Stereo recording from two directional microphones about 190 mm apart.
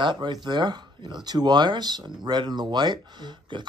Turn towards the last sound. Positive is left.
turn(degrees=-25)  # may be behind; listen again after turning